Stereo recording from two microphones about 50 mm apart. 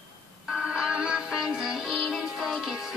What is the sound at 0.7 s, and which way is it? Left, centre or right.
Music, right.